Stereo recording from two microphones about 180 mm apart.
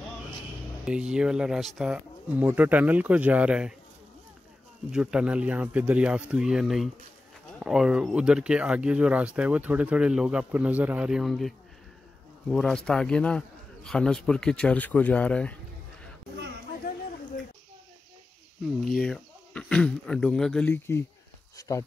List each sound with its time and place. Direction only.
0.8 s speech: 5° right (ahead or behind)
4.9 s speech: 5° right (ahead or behind)
18.9 s speech: centre (ahead or behind); by 21.8 s 20° left (ahead or behind)